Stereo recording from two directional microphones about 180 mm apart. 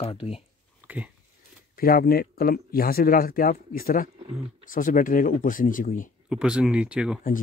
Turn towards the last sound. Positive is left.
turn(degrees=-5)  # may be behind; listen again after turning